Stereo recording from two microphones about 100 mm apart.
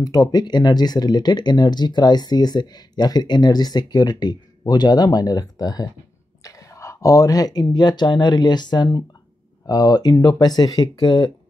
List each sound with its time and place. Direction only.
0.0 s speech: 40° left (ahead or behind)
6.4 s whispering: 35° left (ahead or behind)
7.7 s speech: 45° left (ahead or behind)